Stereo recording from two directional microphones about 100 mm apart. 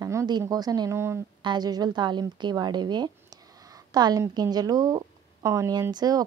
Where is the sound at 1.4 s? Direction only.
45° right (ahead or behind).